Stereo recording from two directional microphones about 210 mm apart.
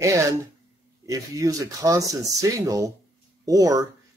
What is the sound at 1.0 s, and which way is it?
Speech, 15° right (ahead or behind).